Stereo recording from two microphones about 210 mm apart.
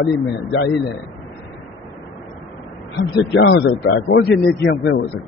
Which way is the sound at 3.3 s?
60° left (ahead or behind).